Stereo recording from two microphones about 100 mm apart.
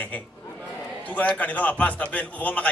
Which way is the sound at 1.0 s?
15° left (ahead or behind).